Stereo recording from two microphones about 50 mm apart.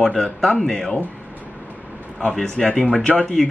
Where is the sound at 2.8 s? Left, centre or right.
Centre.